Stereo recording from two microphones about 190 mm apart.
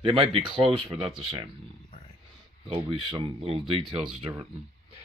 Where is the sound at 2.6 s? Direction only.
30° right (ahead or behind).